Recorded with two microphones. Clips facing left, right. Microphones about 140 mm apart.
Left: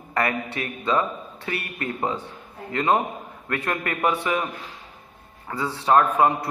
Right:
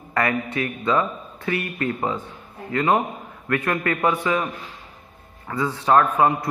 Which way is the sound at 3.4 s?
30° left (ahead or behind).